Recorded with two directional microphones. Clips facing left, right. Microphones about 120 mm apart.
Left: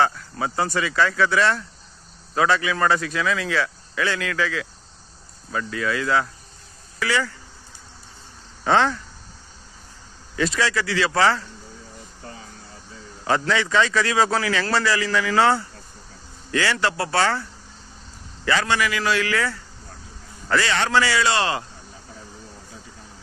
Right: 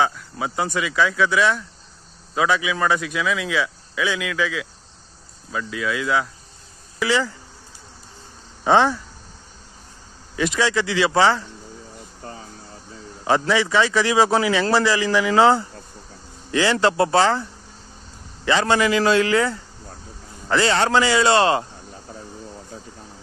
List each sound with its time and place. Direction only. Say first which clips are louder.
0.0 s a man's voice: even; 5° right (ahead or behind)
7.0 s a man's voice: right 3 dB; 20° right (ahead or behind)
8.6 s a man's voice: right 3 dB; 15° right (ahead or behind)
10.3 s a man's voice: right 2 dB; 15° right (ahead or behind)
13.2 s a man's voice: right 3 dB; 15° right (ahead or behind)
16.7 s a man's voice: right 5 dB; 25° right (ahead or behind)